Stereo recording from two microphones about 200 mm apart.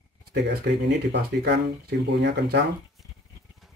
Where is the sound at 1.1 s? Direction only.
55° right (ahead or behind).